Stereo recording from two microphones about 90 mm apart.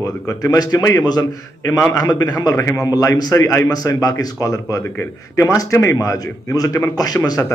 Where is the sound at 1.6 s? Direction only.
30° left (ahead or behind).